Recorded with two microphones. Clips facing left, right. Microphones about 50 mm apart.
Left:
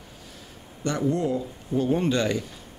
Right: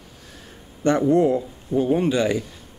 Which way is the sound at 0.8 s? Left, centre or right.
Right.